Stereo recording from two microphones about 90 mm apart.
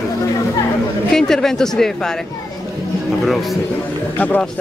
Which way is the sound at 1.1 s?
5° left (ahead or behind).